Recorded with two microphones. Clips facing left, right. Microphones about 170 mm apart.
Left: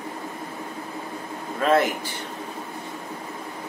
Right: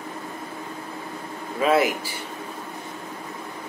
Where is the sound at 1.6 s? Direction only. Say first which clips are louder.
Even; 10° right (ahead or behind).